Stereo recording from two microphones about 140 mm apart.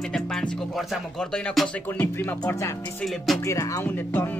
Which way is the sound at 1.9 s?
15° left (ahead or behind).